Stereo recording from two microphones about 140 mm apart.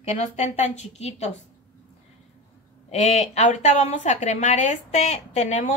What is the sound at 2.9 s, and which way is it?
A woman's voice, 50° left (ahead or behind).